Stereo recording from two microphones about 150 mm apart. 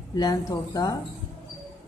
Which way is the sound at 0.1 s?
25° left (ahead or behind).